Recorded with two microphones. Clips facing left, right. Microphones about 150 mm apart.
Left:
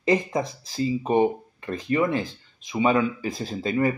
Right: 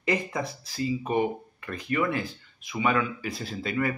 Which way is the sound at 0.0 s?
25° left (ahead or behind).